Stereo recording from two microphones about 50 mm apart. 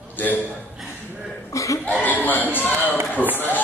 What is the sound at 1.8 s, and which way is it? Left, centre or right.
A man's voice, left.